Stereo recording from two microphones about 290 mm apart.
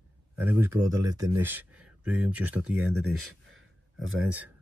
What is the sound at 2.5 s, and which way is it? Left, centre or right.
Speech, right.